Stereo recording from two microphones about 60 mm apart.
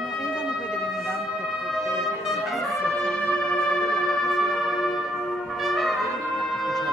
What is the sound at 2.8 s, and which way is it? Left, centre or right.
Music, centre.